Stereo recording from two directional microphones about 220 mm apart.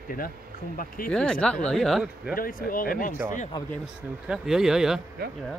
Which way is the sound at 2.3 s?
40° left (ahead or behind).